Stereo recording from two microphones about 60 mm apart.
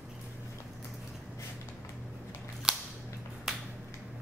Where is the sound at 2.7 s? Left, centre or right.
Centre.